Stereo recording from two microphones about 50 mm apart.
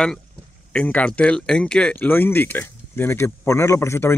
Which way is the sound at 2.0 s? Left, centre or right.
Left.